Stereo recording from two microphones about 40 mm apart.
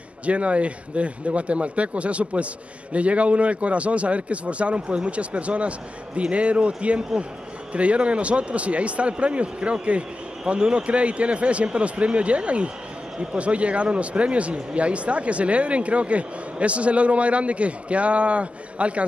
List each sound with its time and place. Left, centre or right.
0.2 s speech: right